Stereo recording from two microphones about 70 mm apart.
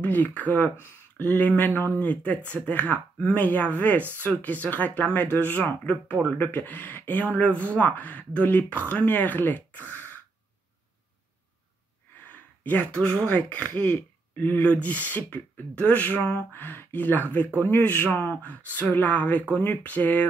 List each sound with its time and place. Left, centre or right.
0.0 s speech: left
9.8 s throat clearing: left
12.3 s a sound: left
13.4 s speech: left
14.6 s speech: centre
17.4 s speech: right
18.1 s speech: left
18.5 s speech: left